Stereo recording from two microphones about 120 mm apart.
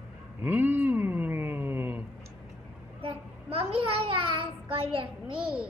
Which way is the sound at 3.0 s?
50° right (ahead or behind).